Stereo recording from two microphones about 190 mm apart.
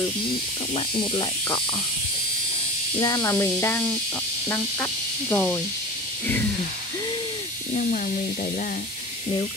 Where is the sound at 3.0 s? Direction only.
15° left (ahead or behind).